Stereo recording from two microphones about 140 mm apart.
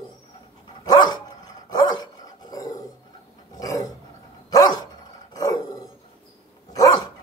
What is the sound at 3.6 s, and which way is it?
Roar, 25° left (ahead or behind).